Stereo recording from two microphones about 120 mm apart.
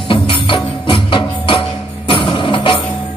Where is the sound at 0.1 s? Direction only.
45° left (ahead or behind).